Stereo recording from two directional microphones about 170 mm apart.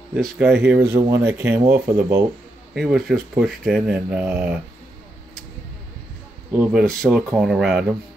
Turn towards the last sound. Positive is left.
turn(degrees=-5)  # may be behind; listen again after turning